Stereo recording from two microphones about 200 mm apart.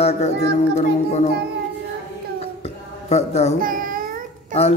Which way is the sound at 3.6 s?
45° right (ahead or behind).